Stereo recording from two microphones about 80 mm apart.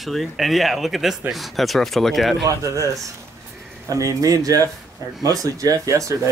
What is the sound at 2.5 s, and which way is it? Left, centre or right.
Speech, right.